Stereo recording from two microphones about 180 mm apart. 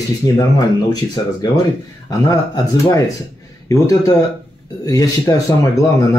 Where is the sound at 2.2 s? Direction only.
20° left (ahead or behind).